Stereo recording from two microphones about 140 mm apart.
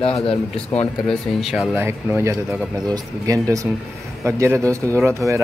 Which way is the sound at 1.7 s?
15° right (ahead or behind).